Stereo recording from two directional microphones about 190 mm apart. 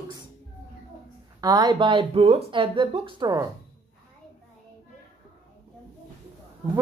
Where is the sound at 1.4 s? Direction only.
20° right (ahead or behind).